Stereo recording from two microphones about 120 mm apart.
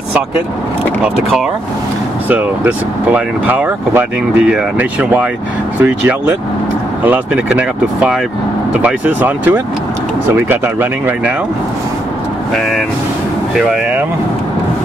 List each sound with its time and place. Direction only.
2.2 s speech: 15° right (ahead or behind)
13.6 s speech: 5° right (ahead or behind)